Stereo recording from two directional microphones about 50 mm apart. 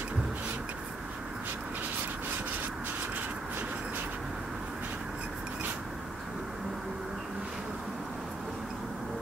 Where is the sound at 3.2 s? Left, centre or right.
Right.